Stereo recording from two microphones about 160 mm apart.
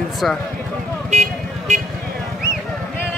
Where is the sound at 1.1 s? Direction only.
50° right (ahead or behind).